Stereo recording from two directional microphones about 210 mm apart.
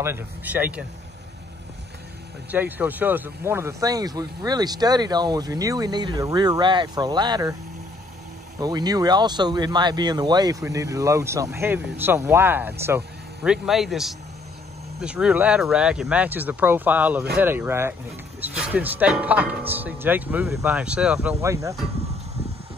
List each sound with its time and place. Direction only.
0.0 s speech: 10° right (ahead or behind)
2.5 s speech: 10° right (ahead or behind)
8.5 s speech: 20° right (ahead or behind)